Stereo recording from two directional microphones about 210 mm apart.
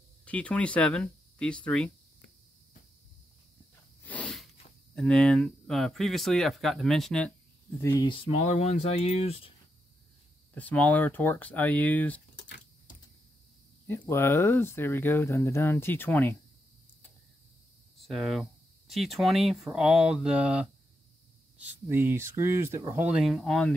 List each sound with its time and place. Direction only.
0.2 s speech: 5° left (ahead or behind)
4.0 s sneeze: 5° left (ahead or behind)
4.9 s speech: 5° left (ahead or behind)
7.8 s speech: 15° left (ahead or behind)
10.5 s speech: 5° left (ahead or behind)
12.4 s a sound: 50° left (ahead or behind)
13.8 s speech: 10° left (ahead or behind)
17.9 s speech: centre (ahead or behind)
21.8 s speech: 10° right (ahead or behind)